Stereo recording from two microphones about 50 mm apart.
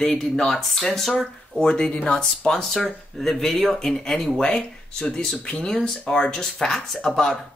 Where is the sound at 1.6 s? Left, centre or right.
Centre.